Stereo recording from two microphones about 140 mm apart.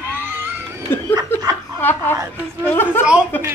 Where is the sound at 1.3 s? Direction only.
15° left (ahead or behind).